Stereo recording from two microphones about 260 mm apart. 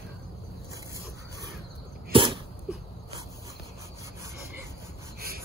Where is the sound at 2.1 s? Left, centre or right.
Centre.